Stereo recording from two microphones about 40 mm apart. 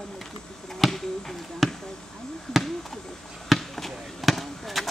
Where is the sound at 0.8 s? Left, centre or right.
Centre.